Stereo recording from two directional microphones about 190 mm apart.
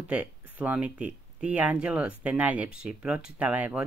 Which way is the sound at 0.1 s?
10° right (ahead or behind).